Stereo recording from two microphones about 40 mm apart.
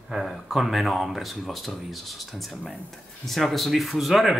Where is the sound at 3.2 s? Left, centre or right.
Centre.